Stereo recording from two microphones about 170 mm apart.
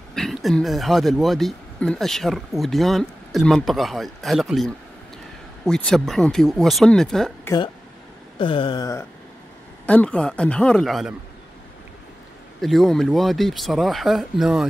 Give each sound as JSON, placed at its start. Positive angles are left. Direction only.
{"t": 0.1, "sound": "speech", "side_deg": 0}
{"t": 5.7, "sound": "speech", "side_deg": 5}
{"t": 8.4, "sound": "a sound", "side_deg": 30}
{"t": 9.8, "sound": "speech", "side_deg": 5}
{"t": 12.6, "sound": "speech", "side_deg": 0}